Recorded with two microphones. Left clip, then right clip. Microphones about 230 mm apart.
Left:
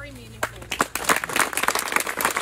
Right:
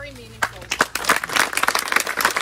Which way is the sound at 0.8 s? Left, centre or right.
Left.